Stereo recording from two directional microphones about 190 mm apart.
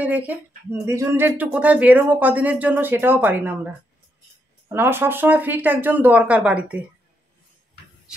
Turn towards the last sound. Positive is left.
turn(degrees=-5)  # may be behind; listen again after turning